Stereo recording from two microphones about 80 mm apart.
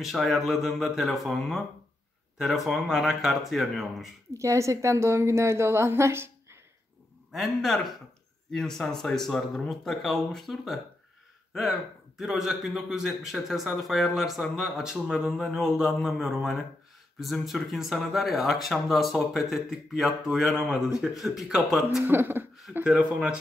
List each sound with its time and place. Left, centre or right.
0.0 s a man's voice: centre
4.4 s a woman's voice: right
7.3 s a man's voice: centre
22.0 s speech: right
22.8 s speech: centre